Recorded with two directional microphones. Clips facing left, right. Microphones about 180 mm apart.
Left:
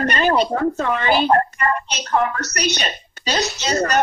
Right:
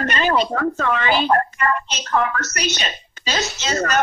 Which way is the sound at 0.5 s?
20° left (ahead or behind).